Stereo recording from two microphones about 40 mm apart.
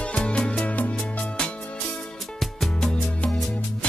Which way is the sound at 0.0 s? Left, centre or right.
Left.